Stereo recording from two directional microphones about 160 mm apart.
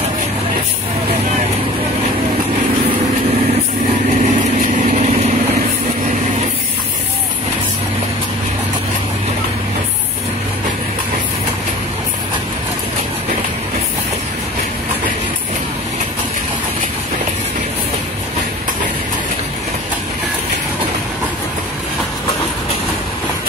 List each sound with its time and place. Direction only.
4.2 s vehicle: 50° right (ahead or behind)